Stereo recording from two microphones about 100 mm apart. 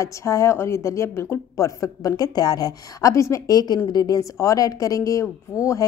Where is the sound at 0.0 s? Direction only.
30° left (ahead or behind).